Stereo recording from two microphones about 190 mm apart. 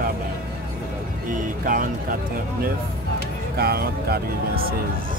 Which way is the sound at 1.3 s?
45° right (ahead or behind).